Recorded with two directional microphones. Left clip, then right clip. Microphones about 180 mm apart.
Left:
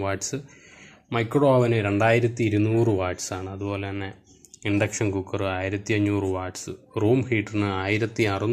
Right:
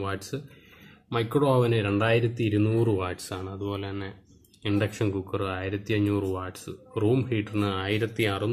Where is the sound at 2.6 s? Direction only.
Centre (ahead or behind).